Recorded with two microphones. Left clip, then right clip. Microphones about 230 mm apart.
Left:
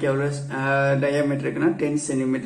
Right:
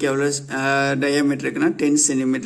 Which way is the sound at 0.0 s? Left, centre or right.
Right.